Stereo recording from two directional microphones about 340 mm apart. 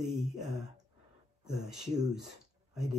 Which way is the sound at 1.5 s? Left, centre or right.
Centre.